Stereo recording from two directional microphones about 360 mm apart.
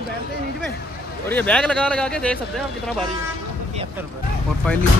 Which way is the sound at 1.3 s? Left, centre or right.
Centre.